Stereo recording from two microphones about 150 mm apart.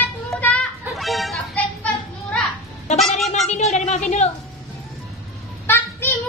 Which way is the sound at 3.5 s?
50° left (ahead or behind).